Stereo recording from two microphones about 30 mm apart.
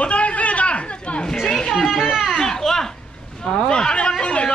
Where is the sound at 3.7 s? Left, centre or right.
Left.